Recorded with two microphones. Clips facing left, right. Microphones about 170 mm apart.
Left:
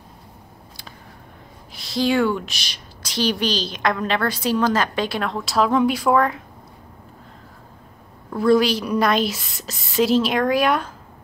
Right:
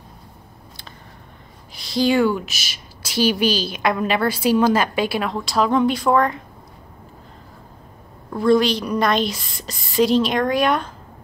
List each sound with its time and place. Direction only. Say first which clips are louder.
1.7 s speech: right 2 dB; centre (ahead or behind)
8.3 s speech: even; 5° left (ahead or behind)